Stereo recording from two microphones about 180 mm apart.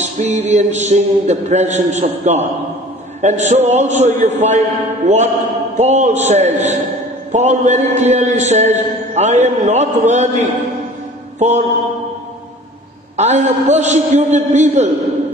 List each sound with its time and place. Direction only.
0.0 s a man's voice: 40° right (ahead or behind)
11.3 s mantra: 40° right (ahead or behind)
13.1 s a man's voice: 40° right (ahead or behind)